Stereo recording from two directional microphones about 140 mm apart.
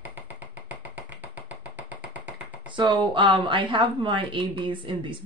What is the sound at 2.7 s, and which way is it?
Speech, 35° right (ahead or behind).